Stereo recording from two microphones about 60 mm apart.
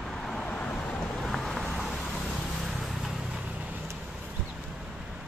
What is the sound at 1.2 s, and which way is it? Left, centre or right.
Vehicle, centre.